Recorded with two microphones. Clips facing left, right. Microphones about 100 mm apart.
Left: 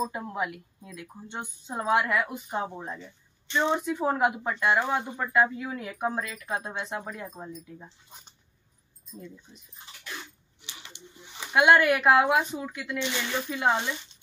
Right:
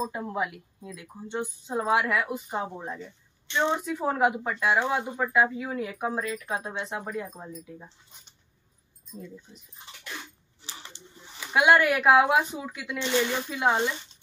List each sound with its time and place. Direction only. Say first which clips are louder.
0.2 s speech: right 1 dB; centre (ahead or behind)
10.6 s a sound: right 3 dB; 35° right (ahead or behind)
11.5 s speech: left 1 dB; centre (ahead or behind)